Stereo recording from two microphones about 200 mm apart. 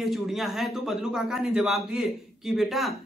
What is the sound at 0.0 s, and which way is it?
Speech, centre (ahead or behind).